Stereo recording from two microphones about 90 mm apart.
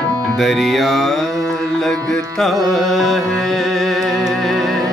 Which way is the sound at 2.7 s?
Centre (ahead or behind).